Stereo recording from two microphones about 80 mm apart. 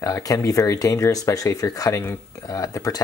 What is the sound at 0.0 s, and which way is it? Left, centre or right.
Speech, left.